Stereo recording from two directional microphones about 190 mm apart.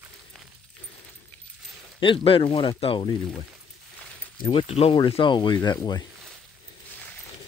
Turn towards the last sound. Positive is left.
turn(degrees=20)  # may be behind; listen again after turning